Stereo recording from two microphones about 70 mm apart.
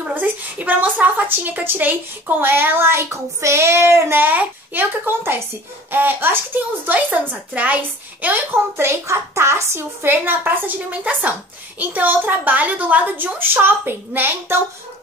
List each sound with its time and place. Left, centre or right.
0.1 s a woman's voice: right
8.7 s a woman's voice: right